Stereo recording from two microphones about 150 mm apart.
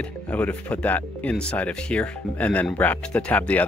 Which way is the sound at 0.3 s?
10° left (ahead or behind).